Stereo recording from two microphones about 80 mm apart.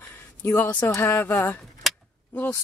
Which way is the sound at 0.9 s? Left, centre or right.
Left.